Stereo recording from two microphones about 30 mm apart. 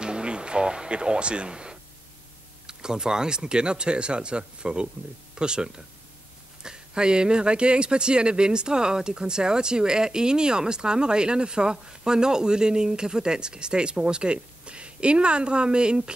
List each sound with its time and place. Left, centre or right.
0.0 s speech: right